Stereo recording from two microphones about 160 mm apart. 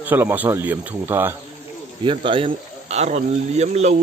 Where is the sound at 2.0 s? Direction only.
30° right (ahead or behind).